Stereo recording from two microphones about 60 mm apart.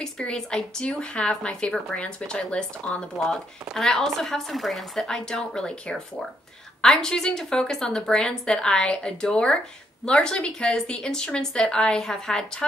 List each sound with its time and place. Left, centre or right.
0.2 s speech: centre
3.7 s a woman's voice: centre